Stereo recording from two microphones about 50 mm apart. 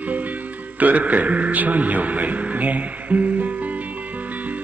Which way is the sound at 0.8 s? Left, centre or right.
Right.